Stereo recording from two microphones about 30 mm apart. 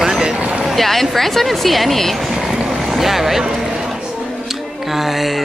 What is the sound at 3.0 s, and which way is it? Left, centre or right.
Speech, centre.